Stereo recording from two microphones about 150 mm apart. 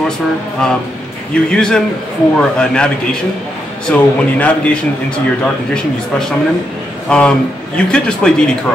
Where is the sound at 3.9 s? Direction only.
10° left (ahead or behind).